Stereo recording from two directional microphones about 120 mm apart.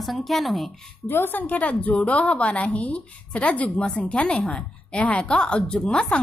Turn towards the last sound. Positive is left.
turn(degrees=5)  # may be behind; listen again after turning